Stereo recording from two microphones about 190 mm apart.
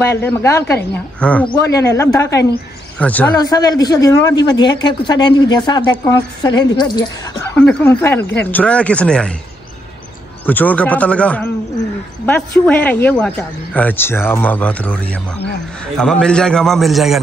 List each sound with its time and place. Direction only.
0.1 s speech: 15° left (ahead or behind)
1.5 s speech: 15° left (ahead or behind)
3.3 s speech: 20° left (ahead or behind)
7.5 s speech: 10° left (ahead or behind)
10.4 s a man's voice: 10° left (ahead or behind)